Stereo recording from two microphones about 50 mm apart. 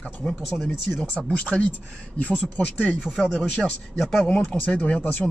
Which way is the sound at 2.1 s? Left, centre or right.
Left.